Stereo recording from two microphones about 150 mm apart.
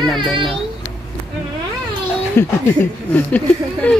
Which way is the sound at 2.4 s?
15° left (ahead or behind).